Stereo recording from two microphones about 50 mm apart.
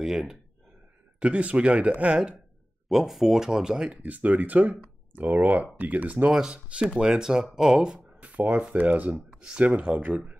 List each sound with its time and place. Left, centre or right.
0.0 s speech: centre
1.2 s speech: right
2.9 s speech: centre
4.0 s speech: right
6.3 s speech: centre
8.2 s a sound: right
8.7 s speech: right
9.1 s speech: centre
9.8 s speech: right